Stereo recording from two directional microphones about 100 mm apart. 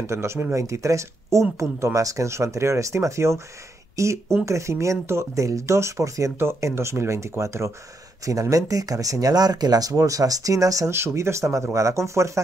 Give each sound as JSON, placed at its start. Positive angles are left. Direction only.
{"t": 0.0, "sound": "speech", "side_deg": -25}